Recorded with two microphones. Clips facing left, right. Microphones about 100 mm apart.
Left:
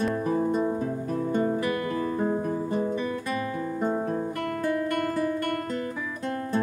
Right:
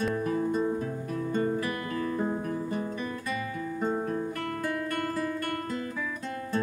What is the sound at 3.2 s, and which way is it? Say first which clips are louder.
Music: left 4 dB; 45° left (ahead or behind).